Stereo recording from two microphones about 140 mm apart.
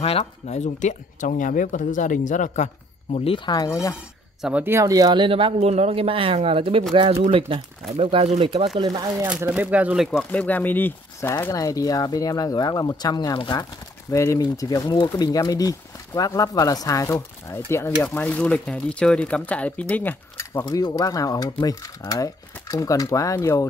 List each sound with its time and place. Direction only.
0.0 s speech: 45° left (ahead or behind)
3.3 s speech: 30° left (ahead or behind)
4.4 s speech: 5° right (ahead or behind)
4.6 s speech: 20° right (ahead or behind); by 8.6 s 40° right (ahead or behind)
9.2 s speech: 10° right (ahead or behind)
10.1 s speech: 10° left (ahead or behind)
20.6 s speech: 30° left (ahead or behind)